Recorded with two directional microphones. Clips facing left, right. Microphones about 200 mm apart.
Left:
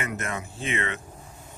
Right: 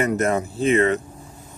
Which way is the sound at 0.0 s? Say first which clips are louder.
Right 11 dB; 40° right (ahead or behind).